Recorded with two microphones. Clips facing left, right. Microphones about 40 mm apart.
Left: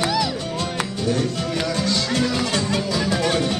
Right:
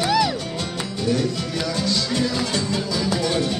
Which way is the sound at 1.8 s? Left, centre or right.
Left.